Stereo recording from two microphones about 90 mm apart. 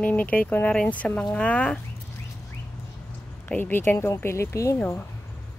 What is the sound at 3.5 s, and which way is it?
Speech, 20° left (ahead or behind).